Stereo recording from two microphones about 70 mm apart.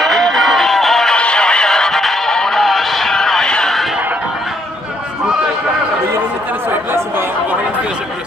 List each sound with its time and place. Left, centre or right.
0.0 s music: centre
1.1 s music: centre
6.7 s chatter: right